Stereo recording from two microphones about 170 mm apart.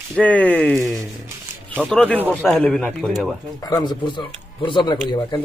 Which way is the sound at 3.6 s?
20° left (ahead or behind).